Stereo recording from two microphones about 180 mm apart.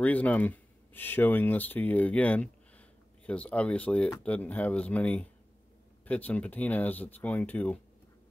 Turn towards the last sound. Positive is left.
turn(degrees=10)  # may be behind; listen again after turning